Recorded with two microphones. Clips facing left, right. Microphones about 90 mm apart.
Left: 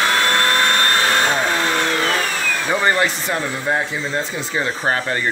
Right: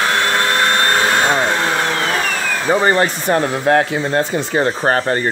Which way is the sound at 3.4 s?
75° right (ahead or behind).